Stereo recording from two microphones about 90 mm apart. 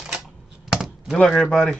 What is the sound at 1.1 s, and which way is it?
Speech, 5° left (ahead or behind).